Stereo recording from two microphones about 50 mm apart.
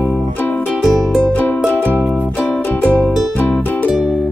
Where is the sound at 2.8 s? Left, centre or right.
Left.